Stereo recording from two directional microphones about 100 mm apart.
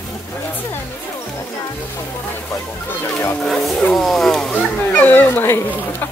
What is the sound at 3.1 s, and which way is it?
Speech, 20° left (ahead or behind).